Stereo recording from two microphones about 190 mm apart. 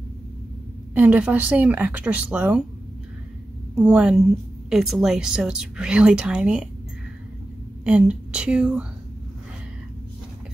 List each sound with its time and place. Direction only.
0.9 s speech: 10° right (ahead or behind)
3.7 s a woman's voice: 5° right (ahead or behind)
7.8 s a woman's voice: 5° right (ahead or behind)